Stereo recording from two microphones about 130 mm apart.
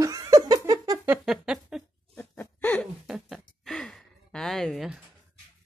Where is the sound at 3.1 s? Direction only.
5° right (ahead or behind).